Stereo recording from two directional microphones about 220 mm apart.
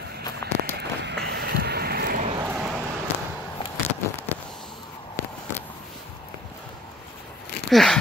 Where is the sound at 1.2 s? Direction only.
45° right (ahead or behind).